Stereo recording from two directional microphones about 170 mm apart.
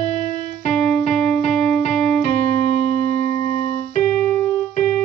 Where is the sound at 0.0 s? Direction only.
45° left (ahead or behind).